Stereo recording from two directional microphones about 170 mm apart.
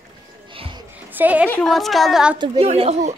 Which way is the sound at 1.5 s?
Centre (ahead or behind).